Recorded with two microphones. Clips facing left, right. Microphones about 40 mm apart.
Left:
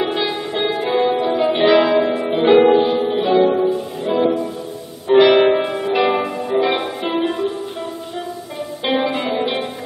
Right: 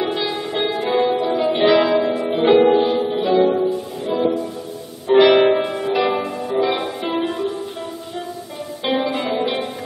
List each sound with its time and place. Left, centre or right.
0.0 s music: centre
5.0 s music: centre
8.8 s music: centre